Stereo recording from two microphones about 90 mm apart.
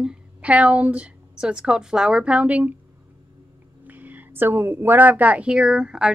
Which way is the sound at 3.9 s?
20° right (ahead or behind).